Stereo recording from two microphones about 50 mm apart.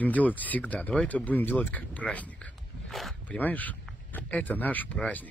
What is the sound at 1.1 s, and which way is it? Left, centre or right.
Speech, centre.